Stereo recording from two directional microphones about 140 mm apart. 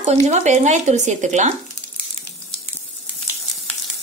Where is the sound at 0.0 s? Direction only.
50° right (ahead or behind).